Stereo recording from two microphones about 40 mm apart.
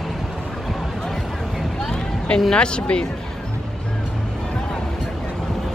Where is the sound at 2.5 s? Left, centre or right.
Left.